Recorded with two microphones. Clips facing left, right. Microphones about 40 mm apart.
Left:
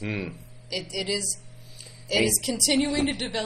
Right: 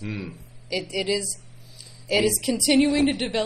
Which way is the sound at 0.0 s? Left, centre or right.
Left.